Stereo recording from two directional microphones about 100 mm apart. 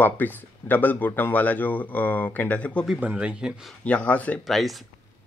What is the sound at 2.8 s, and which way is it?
Speech, 15° right (ahead or behind).